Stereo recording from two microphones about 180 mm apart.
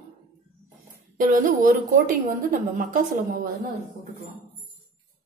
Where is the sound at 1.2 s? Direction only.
50° right (ahead or behind).